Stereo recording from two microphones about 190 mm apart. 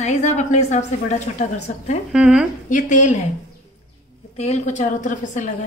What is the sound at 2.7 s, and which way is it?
Speech, 40° left (ahead or behind).